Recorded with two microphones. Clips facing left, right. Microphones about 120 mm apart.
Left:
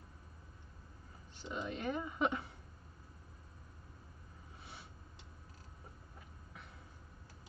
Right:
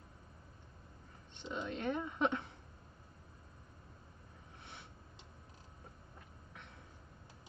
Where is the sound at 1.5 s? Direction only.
5° left (ahead or behind).